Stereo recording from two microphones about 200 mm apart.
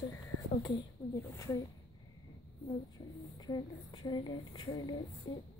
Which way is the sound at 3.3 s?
20° left (ahead or behind).